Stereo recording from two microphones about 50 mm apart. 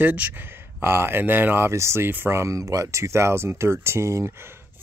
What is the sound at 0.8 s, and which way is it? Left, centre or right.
Speech, right.